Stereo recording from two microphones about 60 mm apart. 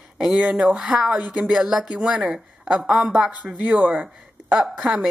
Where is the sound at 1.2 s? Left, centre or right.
Right.